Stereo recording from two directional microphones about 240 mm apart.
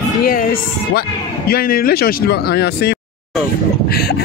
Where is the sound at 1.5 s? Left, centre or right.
Left.